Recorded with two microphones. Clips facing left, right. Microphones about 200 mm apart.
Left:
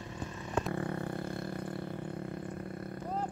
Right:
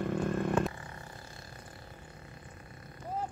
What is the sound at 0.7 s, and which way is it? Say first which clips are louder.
Roar: left 13 dB; 60° left (ahead or behind).